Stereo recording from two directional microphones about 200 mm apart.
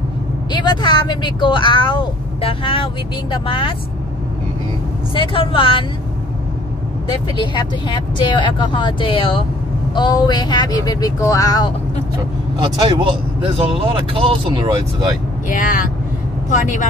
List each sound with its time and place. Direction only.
0.5 s speech: 20° left (ahead or behind)
5.1 s speech: 25° left (ahead or behind)
7.3 s speech: 20° left (ahead or behind)
12.6 s speech: 25° right (ahead or behind)
15.5 s speech: 45° left (ahead or behind)